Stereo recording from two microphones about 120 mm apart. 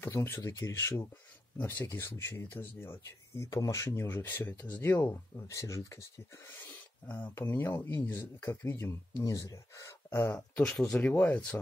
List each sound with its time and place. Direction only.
0.0 s speech: 20° left (ahead or behind)
7.1 s speech: 20° left (ahead or behind)